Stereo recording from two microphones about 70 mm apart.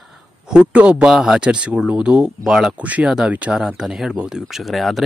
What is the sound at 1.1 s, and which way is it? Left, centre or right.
Speech, centre.